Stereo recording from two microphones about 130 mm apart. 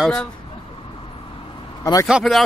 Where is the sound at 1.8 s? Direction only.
25° left (ahead or behind).